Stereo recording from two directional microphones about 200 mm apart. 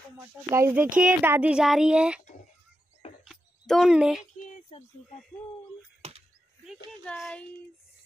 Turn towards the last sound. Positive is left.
turn(degrees=0)  # may be behind; listen again after turning